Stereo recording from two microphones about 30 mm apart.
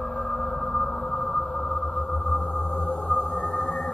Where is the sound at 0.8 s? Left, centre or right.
Left.